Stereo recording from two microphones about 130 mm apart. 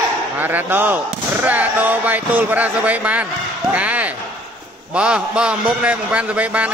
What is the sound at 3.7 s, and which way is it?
Basketball bounce, 10° right (ahead or behind).